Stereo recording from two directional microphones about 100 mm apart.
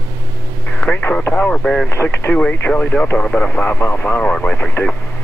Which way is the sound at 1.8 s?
20° left (ahead or behind).